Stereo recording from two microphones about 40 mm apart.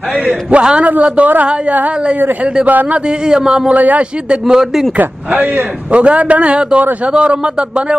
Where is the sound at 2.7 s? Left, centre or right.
Right.